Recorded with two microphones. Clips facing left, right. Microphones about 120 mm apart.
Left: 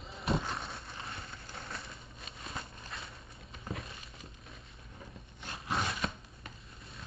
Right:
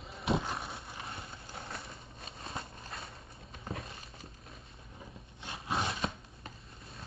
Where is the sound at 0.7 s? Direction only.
25° right (ahead or behind).